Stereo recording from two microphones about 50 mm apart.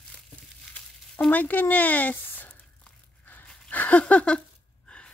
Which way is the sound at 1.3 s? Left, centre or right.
Left.